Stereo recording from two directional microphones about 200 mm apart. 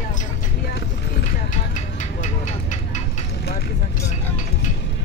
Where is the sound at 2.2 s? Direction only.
40° left (ahead or behind).